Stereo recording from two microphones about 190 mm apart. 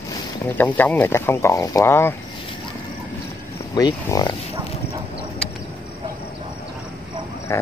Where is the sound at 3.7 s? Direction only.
20° left (ahead or behind).